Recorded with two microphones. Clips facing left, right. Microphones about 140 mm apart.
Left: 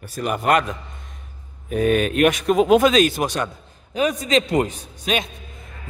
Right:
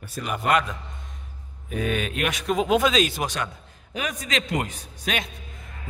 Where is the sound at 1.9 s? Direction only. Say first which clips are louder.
Left 10 dB; 50° left (ahead or behind).